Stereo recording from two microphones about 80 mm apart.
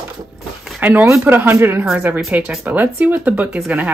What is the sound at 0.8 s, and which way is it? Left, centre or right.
Speech, right.